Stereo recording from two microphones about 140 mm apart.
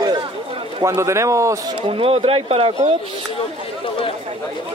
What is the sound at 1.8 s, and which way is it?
Speech, 40° right (ahead or behind).